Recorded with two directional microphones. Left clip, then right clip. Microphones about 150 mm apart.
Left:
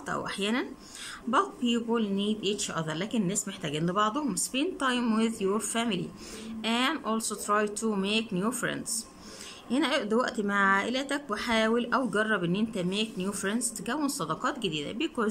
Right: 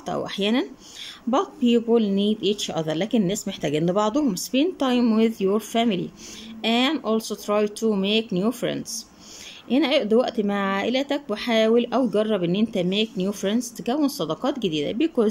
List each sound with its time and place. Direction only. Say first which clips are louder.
0.0 s speech: right 6 dB; 20° right (ahead or behind)